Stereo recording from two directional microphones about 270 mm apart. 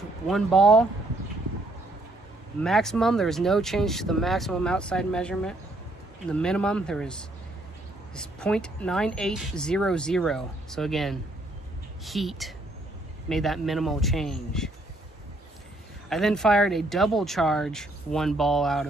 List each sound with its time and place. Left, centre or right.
0.3 s speech: centre
2.6 s speech: centre
16.1 s speech: centre